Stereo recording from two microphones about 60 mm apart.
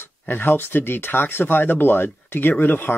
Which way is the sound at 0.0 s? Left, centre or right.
Left.